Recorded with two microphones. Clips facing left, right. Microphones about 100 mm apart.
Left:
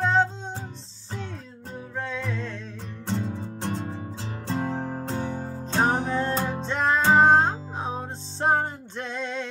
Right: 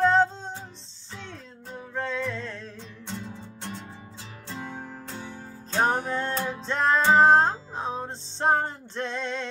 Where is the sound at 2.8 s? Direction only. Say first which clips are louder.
Left 12 dB; 50° left (ahead or behind).